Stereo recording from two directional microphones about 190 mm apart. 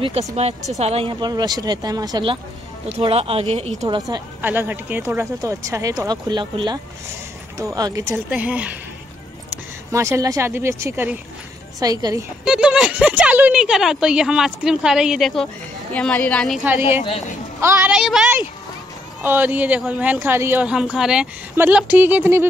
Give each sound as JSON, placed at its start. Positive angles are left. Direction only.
{"t": 0.4, "sound": "speech", "side_deg": -35}
{"t": 4.4, "sound": "speech", "side_deg": -10}
{"t": 9.8, "sound": "speech", "side_deg": -15}
{"t": 12.4, "sound": "speech", "side_deg": -5}
{"t": 17.6, "sound": "speech", "side_deg": -15}